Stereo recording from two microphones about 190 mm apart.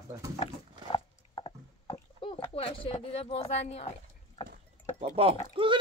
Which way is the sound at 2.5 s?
30° left (ahead or behind).